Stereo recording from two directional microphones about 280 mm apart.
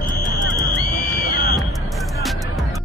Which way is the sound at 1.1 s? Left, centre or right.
Left.